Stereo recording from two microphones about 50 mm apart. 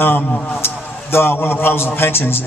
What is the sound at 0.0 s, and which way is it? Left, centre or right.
A man's voice, left.